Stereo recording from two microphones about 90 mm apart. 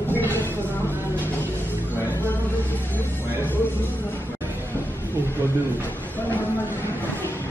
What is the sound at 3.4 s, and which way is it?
Music, 20° left (ahead or behind).